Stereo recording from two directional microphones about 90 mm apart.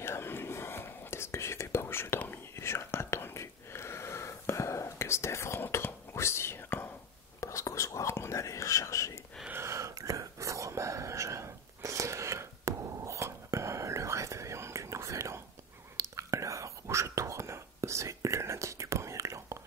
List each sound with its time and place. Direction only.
0.0 s whispering: 25° left (ahead or behind)
7.3 s whispering: 35° left (ahead or behind)
9.5 s whispering: 30° right (ahead or behind)